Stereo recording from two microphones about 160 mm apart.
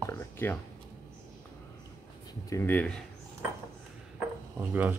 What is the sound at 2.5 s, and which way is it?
Speech, 10° left (ahead or behind).